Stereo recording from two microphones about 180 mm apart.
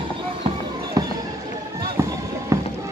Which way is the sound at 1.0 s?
20° right (ahead or behind).